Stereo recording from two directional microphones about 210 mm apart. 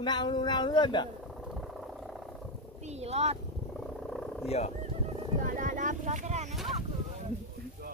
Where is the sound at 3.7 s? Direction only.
Centre (ahead or behind).